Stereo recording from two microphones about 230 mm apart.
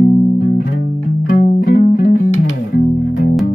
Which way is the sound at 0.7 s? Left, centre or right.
Left.